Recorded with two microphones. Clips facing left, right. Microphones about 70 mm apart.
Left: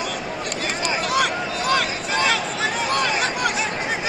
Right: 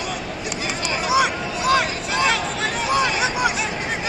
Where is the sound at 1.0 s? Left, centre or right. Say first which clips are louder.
Right 4 dB; centre.